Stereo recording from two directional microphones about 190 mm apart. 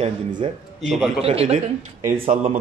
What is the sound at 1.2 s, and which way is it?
Mantra, 30° right (ahead or behind).